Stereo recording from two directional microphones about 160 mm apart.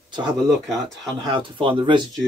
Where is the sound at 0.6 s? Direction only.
Centre (ahead or behind).